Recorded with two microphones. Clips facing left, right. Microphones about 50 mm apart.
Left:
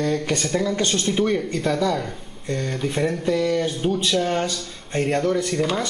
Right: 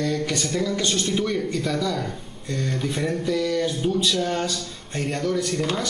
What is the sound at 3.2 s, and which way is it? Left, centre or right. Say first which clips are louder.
Speech: left 1 dB; centre.